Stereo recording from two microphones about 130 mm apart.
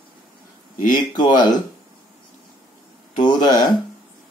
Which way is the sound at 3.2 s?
35° left (ahead or behind).